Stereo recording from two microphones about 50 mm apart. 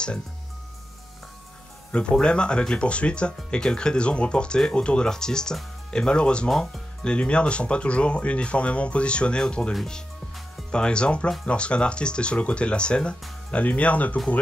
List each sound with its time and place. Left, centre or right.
1.9 s speech: left